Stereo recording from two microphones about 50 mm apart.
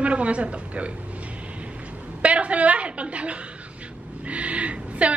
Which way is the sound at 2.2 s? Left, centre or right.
Right.